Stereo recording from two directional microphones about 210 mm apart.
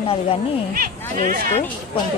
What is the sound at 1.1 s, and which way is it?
Speech, 45° right (ahead or behind).